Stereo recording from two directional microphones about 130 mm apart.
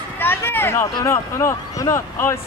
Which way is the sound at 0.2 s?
15° left (ahead or behind).